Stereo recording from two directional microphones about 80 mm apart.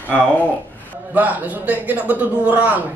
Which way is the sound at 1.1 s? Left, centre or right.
Right.